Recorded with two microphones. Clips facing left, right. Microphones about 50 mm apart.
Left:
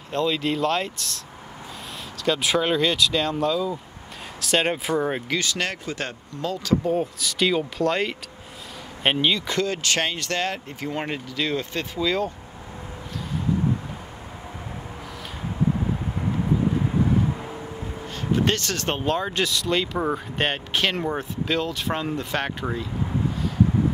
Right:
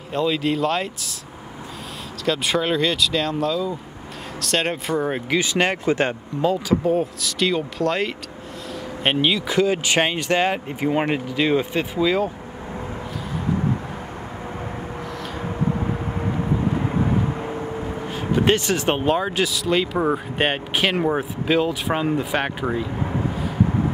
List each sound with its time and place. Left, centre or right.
0.1 s speech: centre
2.2 s speech: centre
5.4 s speech: right
6.4 s speech: centre
6.8 s speech: centre
17.3 s vehicle: right
18.0 s speech: centre